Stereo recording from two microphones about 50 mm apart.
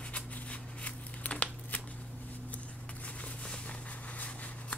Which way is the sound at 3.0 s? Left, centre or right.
Left.